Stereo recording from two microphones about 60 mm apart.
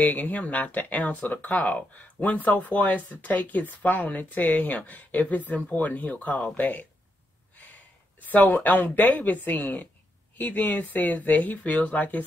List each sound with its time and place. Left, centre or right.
0.0 s speech: left
8.2 s speech: left